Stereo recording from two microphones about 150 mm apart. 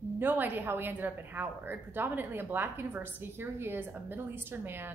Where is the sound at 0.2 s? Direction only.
10° right (ahead or behind).